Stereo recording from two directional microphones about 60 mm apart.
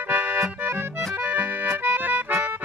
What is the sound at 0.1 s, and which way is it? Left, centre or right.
Accordion, right.